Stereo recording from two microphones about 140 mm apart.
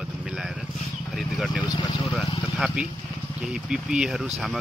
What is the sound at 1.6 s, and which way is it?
Speech, 35° left (ahead or behind).